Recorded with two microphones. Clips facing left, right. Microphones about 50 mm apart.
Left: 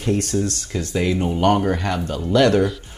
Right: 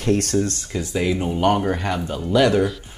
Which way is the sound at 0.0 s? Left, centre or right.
Right.